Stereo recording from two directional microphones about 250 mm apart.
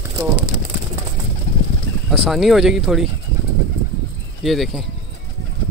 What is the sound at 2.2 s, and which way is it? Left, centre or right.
Speech, centre.